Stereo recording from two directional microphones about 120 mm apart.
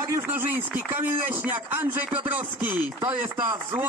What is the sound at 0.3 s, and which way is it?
Speech, 15° right (ahead or behind).